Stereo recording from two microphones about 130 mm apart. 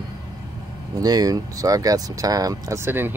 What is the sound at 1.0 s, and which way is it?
Speech, 30° right (ahead or behind).